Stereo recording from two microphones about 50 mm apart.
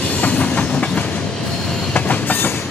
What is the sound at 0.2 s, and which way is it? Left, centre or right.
Train, left.